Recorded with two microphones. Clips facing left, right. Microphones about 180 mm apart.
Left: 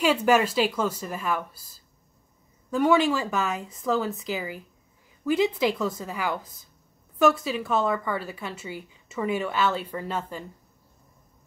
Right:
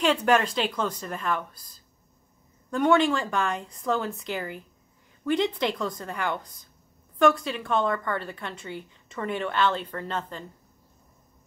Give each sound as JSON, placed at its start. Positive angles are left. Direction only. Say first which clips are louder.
{"t": 0.0, "sound": "a woman's voice", "louder": "left 1 dB", "side_deg": 5}